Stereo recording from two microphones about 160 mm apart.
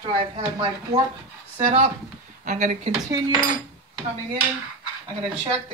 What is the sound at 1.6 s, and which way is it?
Speech, 35° right (ahead or behind).